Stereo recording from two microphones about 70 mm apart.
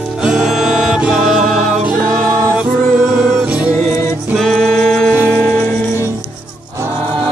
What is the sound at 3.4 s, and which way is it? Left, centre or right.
Music, centre.